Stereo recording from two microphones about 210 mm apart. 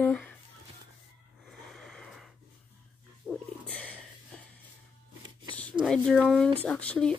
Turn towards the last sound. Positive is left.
turn(degrees=5)  # may be behind; listen again after turning